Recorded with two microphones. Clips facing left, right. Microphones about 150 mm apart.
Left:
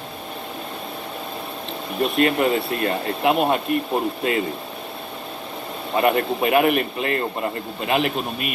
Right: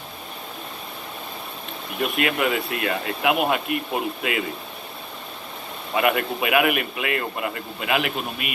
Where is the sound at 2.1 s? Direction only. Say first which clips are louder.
Left 5 dB; 35° left (ahead or behind).